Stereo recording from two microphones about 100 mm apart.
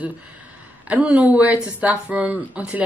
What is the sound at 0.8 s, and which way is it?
Speech, 15° right (ahead or behind).